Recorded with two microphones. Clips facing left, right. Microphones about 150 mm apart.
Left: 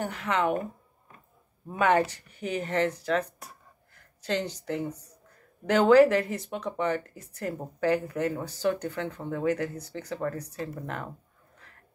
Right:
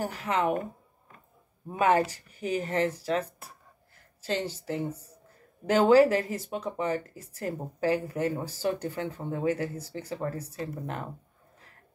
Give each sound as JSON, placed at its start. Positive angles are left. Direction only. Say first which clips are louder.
{"t": 0.0, "sound": "speech", "louder": "even", "side_deg": -35}
{"t": 1.7, "sound": "speech", "louder": "even", "side_deg": -35}
{"t": 3.9, "sound": "a sound", "louder": "left 1 dB", "side_deg": -30}
{"t": 4.6, "sound": "speech", "louder": "even", "side_deg": -30}